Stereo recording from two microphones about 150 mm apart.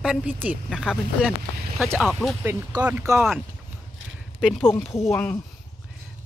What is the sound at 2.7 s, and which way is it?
Speech, 30° right (ahead or behind).